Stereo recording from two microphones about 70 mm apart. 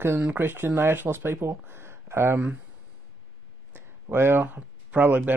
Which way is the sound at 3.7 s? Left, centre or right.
Right.